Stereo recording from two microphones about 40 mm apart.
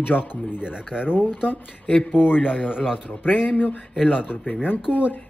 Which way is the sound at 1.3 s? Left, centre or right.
Left.